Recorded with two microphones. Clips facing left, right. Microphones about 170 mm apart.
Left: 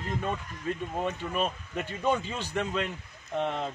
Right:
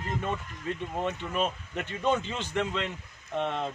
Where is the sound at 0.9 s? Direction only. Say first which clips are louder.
Right 2 dB; 5° left (ahead or behind).